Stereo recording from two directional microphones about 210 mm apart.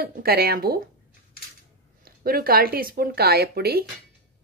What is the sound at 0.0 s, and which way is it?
Speech, 45° right (ahead or behind).